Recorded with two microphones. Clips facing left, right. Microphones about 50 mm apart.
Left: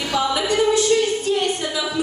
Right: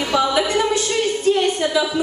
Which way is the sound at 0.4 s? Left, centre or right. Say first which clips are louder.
Even; right.